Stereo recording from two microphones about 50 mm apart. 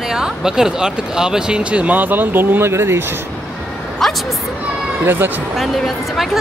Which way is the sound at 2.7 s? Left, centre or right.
Right.